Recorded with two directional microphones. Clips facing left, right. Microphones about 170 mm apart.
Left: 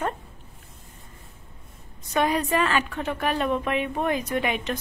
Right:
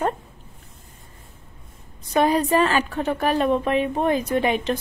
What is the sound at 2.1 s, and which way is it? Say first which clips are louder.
A woman's voice: right 5 dB; 35° right (ahead or behind).